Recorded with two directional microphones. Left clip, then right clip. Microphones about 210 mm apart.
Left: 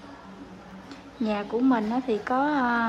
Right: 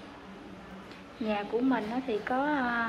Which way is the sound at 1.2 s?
15° left (ahead or behind).